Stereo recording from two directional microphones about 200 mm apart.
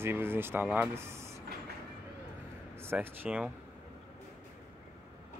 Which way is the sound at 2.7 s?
10° right (ahead or behind).